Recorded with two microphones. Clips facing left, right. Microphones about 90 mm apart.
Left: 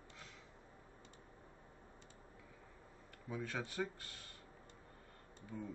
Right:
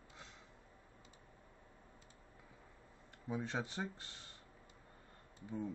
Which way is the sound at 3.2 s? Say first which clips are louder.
Right 3 dB; 20° right (ahead or behind).